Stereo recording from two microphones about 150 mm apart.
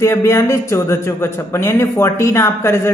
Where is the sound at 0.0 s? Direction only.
15° left (ahead or behind).